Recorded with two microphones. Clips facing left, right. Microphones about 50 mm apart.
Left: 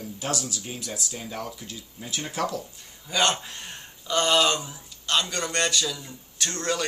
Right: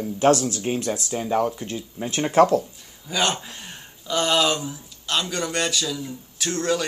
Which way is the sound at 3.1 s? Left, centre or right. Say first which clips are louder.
Even; centre.